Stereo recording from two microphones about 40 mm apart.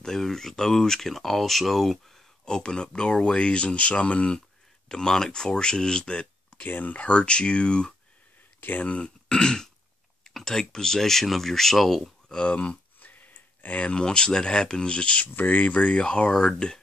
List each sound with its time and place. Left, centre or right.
0.0 s speech: centre
2.4 s speech: left
4.8 s speech: centre
6.6 s speech: left
8.5 s speech: left
8.8 s speech: left; by 12.0 s centre
12.4 s speech: left
13.0 s a sound: left
13.7 s speech: left
15.3 s speech: left
15.6 s speech: left